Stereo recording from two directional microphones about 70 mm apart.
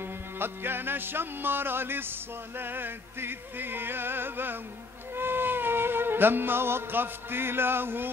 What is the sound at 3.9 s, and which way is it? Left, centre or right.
Music, right.